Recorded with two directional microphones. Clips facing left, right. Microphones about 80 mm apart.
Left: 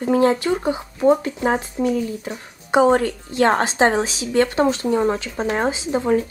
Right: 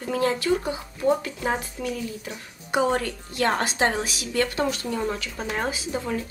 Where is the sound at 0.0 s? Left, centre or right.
Left.